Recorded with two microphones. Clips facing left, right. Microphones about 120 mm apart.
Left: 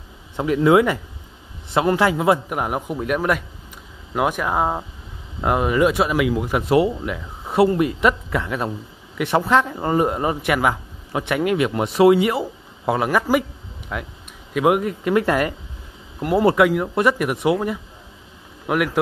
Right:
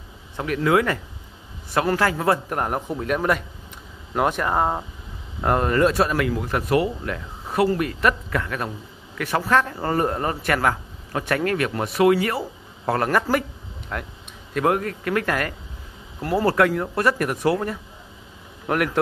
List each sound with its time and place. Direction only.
0.4 s a man's voice: 20° left (ahead or behind)